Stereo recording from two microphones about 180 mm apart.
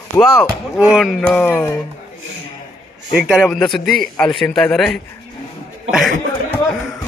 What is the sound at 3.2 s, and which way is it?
A man's voice, centre (ahead or behind).